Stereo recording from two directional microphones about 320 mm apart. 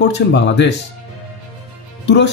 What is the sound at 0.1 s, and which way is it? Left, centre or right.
Speech, left.